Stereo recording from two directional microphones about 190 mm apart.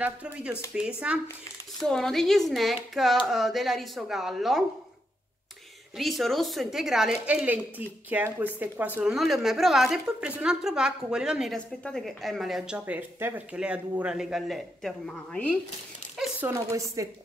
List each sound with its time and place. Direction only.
0.0 s a woman's voice: 5° right (ahead or behind)
5.9 s a woman's voice: centre (ahead or behind)
16.2 s speech: 10° right (ahead or behind)